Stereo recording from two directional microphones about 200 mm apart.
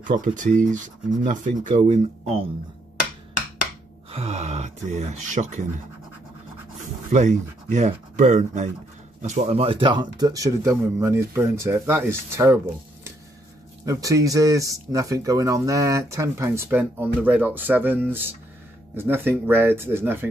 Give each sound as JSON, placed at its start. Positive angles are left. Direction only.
{"t": 0.0, "sound": "speech", "side_deg": -40}
{"t": 4.1, "sound": "speech", "side_deg": -30}
{"t": 6.8, "sound": "speech", "side_deg": -40}
{"t": 13.8, "sound": "speech", "side_deg": -15}